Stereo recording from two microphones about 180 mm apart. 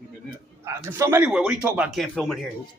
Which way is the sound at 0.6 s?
15° right (ahead or behind).